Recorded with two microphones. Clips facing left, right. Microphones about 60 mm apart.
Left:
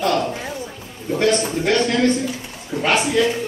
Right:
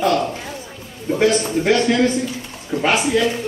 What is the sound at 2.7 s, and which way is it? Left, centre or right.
Speech, right.